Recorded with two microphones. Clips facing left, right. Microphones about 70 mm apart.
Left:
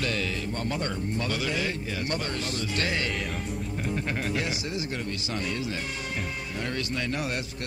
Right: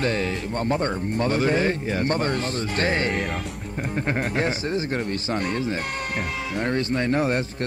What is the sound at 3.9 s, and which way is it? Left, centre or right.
Speech, right.